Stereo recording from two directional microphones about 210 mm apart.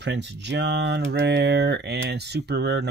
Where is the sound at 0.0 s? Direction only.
55° right (ahead or behind).